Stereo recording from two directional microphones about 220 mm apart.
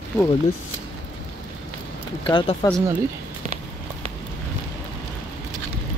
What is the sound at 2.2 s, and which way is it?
Speech, 20° left (ahead or behind).